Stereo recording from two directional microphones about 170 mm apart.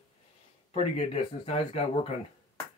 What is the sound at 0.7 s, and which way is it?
Speech, 35° left (ahead or behind).